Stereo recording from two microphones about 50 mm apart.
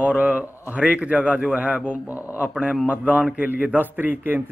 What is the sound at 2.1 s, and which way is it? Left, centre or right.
Speech, right.